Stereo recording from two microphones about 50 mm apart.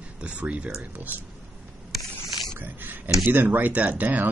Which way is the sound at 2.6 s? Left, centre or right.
Right.